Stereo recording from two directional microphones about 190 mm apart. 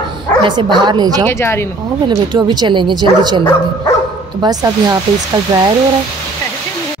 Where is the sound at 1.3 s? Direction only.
15° left (ahead or behind).